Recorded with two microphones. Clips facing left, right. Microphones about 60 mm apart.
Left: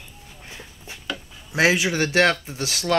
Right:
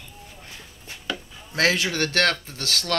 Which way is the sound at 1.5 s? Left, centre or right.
Centre.